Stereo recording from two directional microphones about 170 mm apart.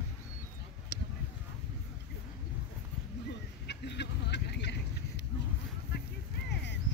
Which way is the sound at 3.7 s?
90° left.